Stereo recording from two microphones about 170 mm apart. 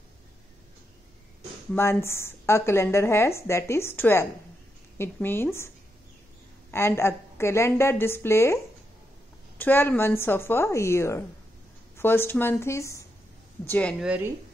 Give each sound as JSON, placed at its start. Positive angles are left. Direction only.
{"t": 1.8, "sound": "a woman's voice", "side_deg": 15}
{"t": 6.7, "sound": "a woman's voice", "side_deg": 15}
{"t": 9.6, "sound": "a woman's voice", "side_deg": 10}
{"t": 13.9, "sound": "speech", "side_deg": -5}